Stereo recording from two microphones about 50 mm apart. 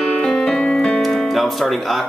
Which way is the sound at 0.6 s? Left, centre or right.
Centre.